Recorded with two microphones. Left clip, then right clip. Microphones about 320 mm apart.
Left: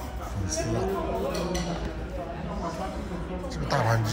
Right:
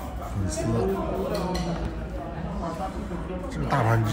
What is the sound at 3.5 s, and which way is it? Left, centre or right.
Speech, centre.